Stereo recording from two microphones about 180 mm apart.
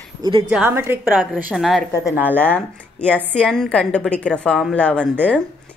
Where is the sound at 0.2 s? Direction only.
30° right (ahead or behind).